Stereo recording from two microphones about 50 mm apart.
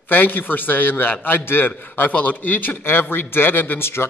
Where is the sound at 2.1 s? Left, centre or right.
Left.